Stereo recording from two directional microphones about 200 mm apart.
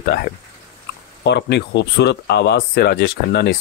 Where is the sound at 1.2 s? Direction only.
60° left (ahead or behind).